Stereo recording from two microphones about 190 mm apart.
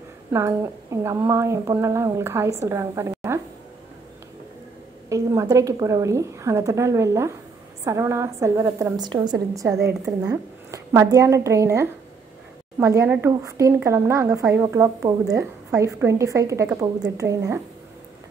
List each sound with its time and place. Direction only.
0.3 s a woman's voice: 15° right (ahead or behind)
5.1 s a woman's voice: 15° right (ahead or behind)